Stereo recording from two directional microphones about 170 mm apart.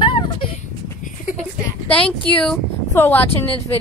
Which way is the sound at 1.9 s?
5° left (ahead or behind).